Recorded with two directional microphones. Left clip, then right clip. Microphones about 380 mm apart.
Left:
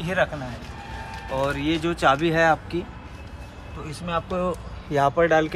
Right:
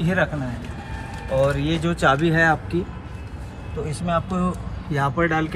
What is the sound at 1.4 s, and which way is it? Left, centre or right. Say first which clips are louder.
Speech: right 2 dB; centre.